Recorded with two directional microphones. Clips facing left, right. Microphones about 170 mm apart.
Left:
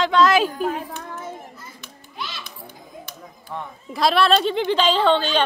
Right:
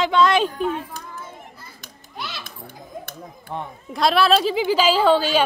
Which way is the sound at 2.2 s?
65° right (ahead or behind).